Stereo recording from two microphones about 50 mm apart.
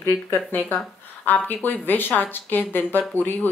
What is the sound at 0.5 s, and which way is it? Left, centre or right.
Speech, left.